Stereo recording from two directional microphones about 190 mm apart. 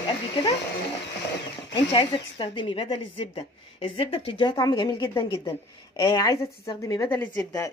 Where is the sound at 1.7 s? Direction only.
25° left (ahead or behind).